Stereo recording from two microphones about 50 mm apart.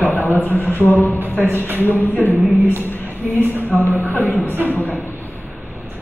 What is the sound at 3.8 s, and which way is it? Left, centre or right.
Speech, left.